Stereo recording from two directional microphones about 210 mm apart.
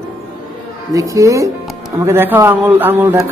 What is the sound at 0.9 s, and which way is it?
Speech, 15° right (ahead or behind).